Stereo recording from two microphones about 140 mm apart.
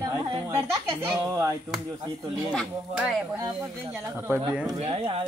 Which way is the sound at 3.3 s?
20° right (ahead or behind).